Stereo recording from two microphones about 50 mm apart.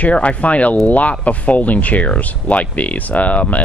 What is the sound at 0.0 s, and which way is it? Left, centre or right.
Speech, left.